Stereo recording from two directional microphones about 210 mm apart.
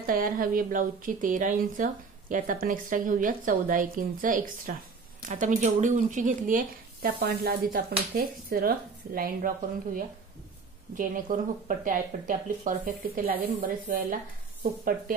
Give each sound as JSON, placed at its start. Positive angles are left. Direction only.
{"t": 0.0, "sound": "a woman's voice", "side_deg": -40}
{"t": 11.0, "sound": "a woman's voice", "side_deg": -40}